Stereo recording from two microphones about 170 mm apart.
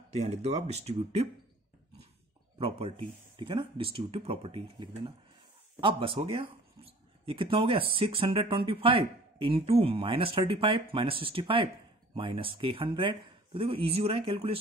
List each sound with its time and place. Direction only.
0.1 s speech: 40° right (ahead or behind)
3.3 s speech: 30° right (ahead or behind)